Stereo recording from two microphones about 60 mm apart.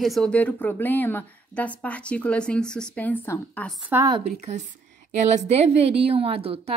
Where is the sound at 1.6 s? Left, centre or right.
Left.